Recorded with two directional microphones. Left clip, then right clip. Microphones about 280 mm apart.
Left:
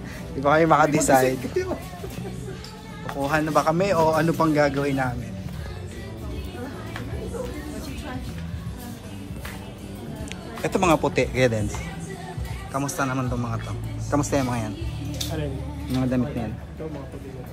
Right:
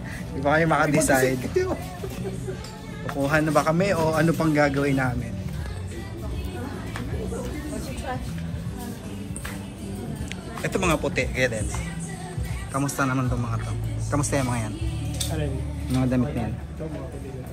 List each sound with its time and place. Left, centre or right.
0.4 s speech: left
3.2 s a man's voice: centre
10.6 s a man's voice: centre
12.7 s a man's voice: centre
15.9 s speech: centre